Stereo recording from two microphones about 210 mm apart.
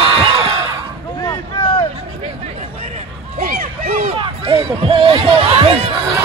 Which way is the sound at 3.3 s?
35° right (ahead or behind).